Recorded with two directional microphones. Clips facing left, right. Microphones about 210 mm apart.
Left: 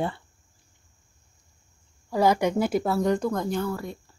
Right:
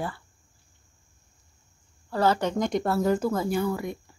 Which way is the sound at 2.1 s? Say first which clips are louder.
Left 2 dB; 10° left (ahead or behind).